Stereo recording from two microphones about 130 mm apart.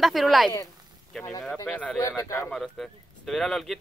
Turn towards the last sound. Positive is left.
turn(degrees=0)  # may be behind; listen again after turning